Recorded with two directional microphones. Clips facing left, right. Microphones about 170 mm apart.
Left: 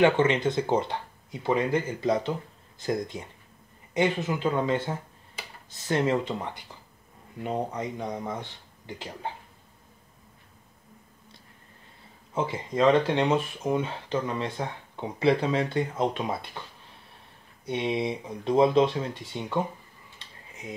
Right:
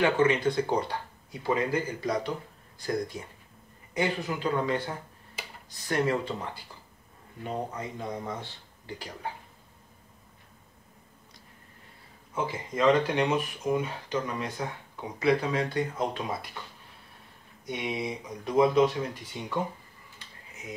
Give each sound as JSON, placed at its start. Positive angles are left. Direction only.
{"t": 0.0, "sound": "speech", "side_deg": 25}
{"t": 12.4, "sound": "speech", "side_deg": 25}
{"t": 17.6, "sound": "speech", "side_deg": 30}